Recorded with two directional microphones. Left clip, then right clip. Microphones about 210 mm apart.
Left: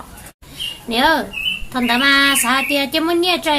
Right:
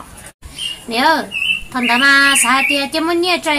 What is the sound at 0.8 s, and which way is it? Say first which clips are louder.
A woman's voice: right 1 dB; 20° left (ahead or behind).